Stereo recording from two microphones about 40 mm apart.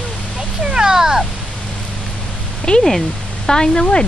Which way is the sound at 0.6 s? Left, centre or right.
Centre.